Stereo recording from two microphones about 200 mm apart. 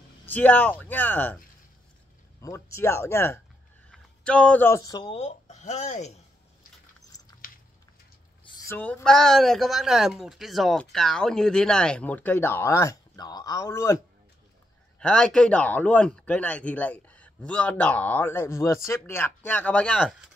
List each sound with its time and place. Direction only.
0.3 s a man's voice: 10° left (ahead or behind)
2.4 s a man's voice: 15° left (ahead or behind); by 6.2 s 35° left (ahead or behind)
7.4 s a sound: 45° left (ahead or behind)
8.6 s a man's voice: 10° left (ahead or behind)
15.0 s a man's voice: 5° left (ahead or behind)